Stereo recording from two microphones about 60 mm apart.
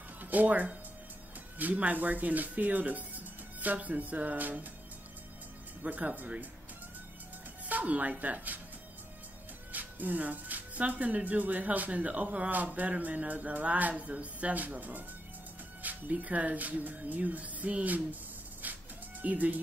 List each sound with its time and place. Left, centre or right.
0.2 s speech: right
5.9 s speech: right
7.6 s speech: right
9.7 s speech: right
19.2 s speech: right